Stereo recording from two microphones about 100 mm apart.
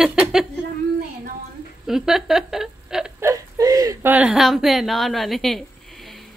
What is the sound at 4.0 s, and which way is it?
Speech, 15° right (ahead or behind).